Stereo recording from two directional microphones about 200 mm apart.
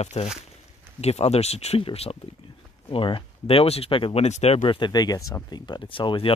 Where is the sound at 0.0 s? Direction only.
30° left (ahead or behind).